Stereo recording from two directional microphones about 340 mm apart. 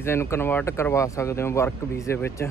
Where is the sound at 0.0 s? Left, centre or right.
Centre.